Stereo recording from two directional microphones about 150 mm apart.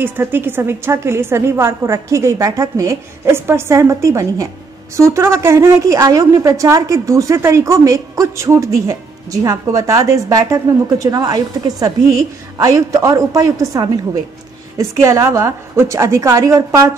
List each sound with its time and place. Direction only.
0.0 s a woman's voice: 15° right (ahead or behind)